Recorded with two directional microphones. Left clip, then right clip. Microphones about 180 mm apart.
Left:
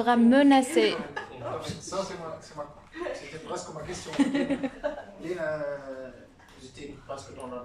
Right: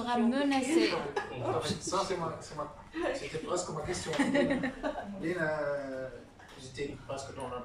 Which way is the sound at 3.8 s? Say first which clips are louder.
Left 7 dB; 10° left (ahead or behind).